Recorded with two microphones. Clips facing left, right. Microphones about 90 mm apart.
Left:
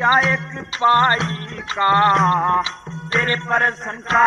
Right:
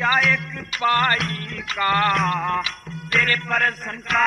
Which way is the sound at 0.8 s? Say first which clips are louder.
Left 5 dB; 30° left (ahead or behind).